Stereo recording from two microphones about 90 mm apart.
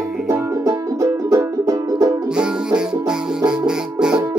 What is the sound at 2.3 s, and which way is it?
Music, 10° right (ahead or behind).